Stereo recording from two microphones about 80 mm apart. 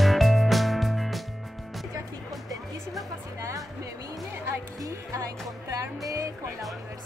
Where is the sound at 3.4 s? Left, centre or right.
Right.